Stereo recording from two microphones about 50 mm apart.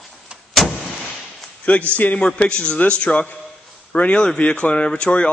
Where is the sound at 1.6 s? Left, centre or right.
Left.